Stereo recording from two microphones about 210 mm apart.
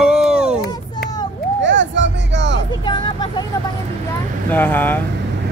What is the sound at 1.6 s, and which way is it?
Music, 60° right (ahead or behind).